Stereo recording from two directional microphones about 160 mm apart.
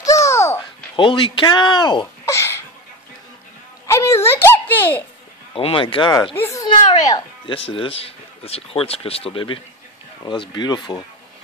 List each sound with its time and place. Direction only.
0.0 s babbling: 20° left (ahead or behind)
0.9 s speech: 30° left (ahead or behind)
2.2 s a sound: 15° left (ahead or behind)
3.8 s a sound: 20° left (ahead or behind)
5.5 s speech: 35° left (ahead or behind)
6.3 s a child's voice: 15° left (ahead or behind)
6.6 s speech: 30° left (ahead or behind)